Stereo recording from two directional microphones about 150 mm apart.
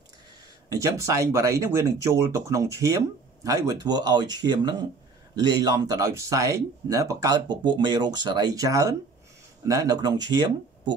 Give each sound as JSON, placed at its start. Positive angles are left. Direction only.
{"t": 0.7, "sound": "speech", "side_deg": -20}